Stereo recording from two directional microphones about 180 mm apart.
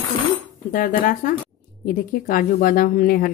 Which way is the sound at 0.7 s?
50° left (ahead or behind).